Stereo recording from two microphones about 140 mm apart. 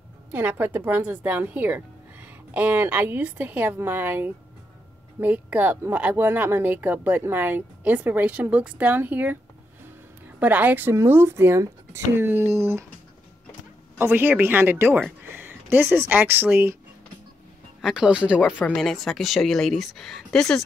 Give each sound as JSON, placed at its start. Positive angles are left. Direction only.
{"t": 0.3, "sound": "speech", "side_deg": -10}
{"t": 13.9, "sound": "speech", "side_deg": -15}
{"t": 17.8, "sound": "speech", "side_deg": -5}